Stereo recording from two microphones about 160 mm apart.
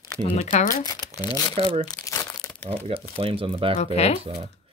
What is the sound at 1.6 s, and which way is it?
Speech, 35° right (ahead or behind).